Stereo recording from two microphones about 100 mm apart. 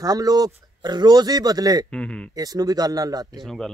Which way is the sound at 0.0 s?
40° right (ahead or behind).